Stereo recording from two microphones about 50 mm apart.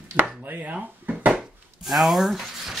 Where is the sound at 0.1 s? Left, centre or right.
Right.